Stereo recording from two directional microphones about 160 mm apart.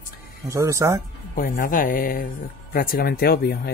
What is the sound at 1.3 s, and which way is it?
Speech, 60° left (ahead or behind).